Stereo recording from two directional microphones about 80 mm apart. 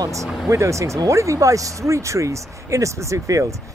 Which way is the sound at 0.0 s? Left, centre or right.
Right.